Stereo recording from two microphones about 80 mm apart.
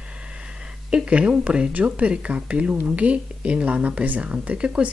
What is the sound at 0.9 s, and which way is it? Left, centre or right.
A woman's voice, centre.